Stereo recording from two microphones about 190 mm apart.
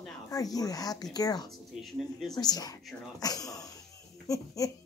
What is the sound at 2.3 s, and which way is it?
Speech, 20° left (ahead or behind).